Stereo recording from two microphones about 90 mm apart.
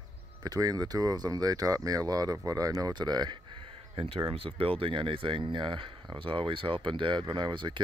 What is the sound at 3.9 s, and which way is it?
Speech, 80° right.